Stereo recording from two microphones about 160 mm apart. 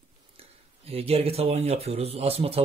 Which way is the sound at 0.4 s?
40° right (ahead or behind).